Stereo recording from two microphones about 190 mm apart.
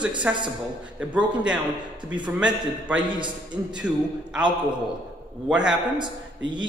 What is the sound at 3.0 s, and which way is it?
Speech, 25° right (ahead or behind).